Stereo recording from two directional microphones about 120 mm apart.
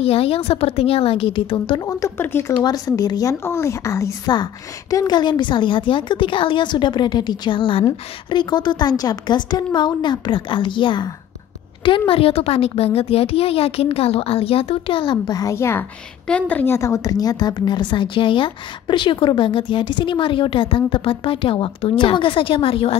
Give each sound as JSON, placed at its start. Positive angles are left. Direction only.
{"t": 0.0, "sound": "a woman's voice", "side_deg": 55}
{"t": 1.9, "sound": "speech", "side_deg": 25}
{"t": 2.6, "sound": "speech", "side_deg": 35}
{"t": 4.9, "sound": "a woman's voice", "side_deg": 35}
{"t": 12.1, "sound": "a woman's voice", "side_deg": 55}
{"t": 16.3, "sound": "a woman's voice", "side_deg": 10}